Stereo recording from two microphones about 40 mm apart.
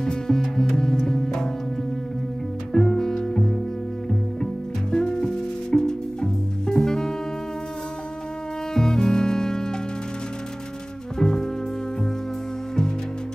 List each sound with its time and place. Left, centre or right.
0.0 s music: centre
2.7 s music: centre
4.9 s music: centre
8.7 s music: centre
11.1 s music: centre